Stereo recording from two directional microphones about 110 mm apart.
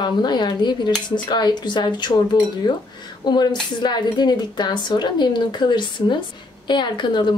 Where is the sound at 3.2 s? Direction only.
40° left (ahead or behind).